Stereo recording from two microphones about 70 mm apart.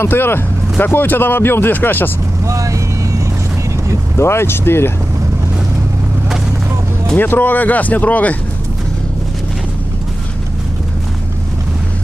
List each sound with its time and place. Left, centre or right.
0.0 s speech: left
2.4 s vehicle: right
4.2 s speech: left
7.2 s speech: left